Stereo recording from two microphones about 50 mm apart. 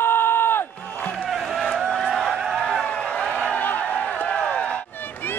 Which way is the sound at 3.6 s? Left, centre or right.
Left.